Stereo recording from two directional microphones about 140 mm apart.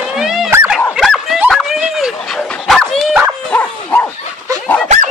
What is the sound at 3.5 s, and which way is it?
Dog, 10° left (ahead or behind).